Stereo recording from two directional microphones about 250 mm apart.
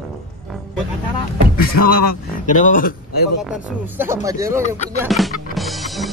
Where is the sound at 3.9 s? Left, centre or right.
Centre.